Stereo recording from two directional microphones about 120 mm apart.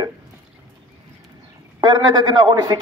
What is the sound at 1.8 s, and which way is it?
A man's voice, 35° right (ahead or behind).